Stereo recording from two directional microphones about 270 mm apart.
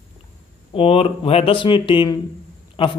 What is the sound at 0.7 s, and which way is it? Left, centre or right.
A man's voice, left.